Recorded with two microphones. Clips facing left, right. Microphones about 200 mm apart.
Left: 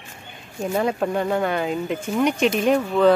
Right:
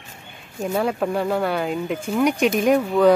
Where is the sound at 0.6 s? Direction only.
Centre (ahead or behind).